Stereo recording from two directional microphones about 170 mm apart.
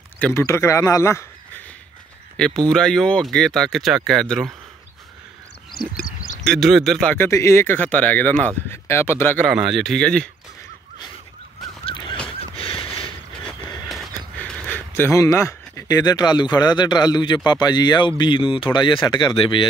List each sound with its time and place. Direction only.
0.2 s speech: 15° left (ahead or behind)
2.3 s speech: 5° left (ahead or behind)
5.8 s a sound: 55° left (ahead or behind)
6.4 s speech: centre (ahead or behind)
7.2 s speech: 15° left (ahead or behind)
9.5 s speech: 5° right (ahead or behind)
11.8 s goose: 30° left (ahead or behind)
12.5 s a sound: 30° left (ahead or behind)
14.4 s speech: 10° left (ahead or behind); by 19.7 s 30° left (ahead or behind)